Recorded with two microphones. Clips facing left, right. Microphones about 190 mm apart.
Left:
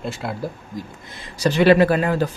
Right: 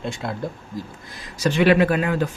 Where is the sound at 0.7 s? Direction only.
20° left (ahead or behind).